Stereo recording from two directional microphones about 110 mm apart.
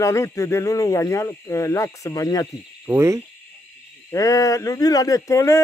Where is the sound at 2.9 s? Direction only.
25° right (ahead or behind).